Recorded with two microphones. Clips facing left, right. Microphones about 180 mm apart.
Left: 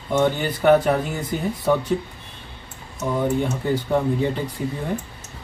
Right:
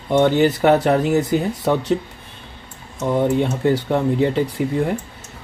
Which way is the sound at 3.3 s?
80° right.